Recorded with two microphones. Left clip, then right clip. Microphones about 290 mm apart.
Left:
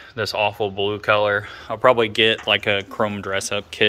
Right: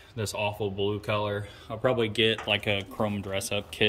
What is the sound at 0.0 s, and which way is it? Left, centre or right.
Speech, centre.